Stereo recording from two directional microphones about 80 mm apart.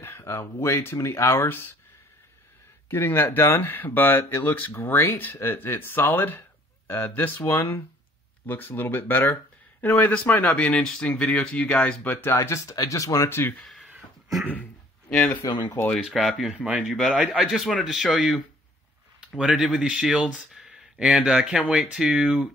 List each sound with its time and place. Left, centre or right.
0.0 s speech: left
2.9 s speech: left
12.4 s speech: left
13.3 s speech: left
15.0 s speech: centre
16.0 s speech: centre
16.5 s speech: centre
19.3 s speech: centre